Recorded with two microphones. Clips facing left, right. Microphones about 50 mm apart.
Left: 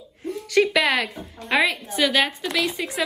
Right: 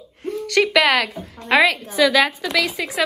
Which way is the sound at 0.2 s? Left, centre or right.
Right.